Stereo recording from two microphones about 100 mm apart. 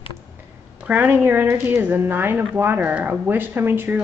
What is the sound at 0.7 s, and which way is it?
A woman's voice, 15° right (ahead or behind).